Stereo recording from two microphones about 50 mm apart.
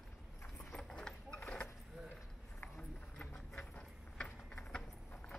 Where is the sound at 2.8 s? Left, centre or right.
Centre.